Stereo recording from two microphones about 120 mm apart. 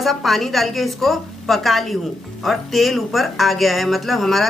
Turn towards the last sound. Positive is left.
turn(degrees=0)  # may be behind; listen again after turning